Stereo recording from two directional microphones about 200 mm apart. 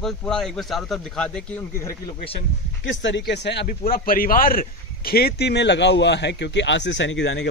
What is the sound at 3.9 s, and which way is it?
A man's voice, 45° left (ahead or behind).